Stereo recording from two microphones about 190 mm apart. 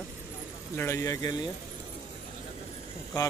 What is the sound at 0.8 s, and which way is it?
Speech, 15° left (ahead or behind).